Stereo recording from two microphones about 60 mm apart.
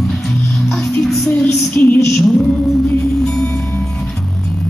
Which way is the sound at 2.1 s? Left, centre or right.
Centre.